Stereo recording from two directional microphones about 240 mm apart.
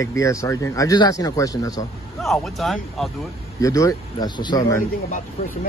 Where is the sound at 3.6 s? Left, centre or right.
Centre.